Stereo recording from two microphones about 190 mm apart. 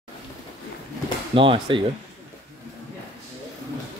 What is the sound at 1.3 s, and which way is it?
Speech, 25° right (ahead or behind).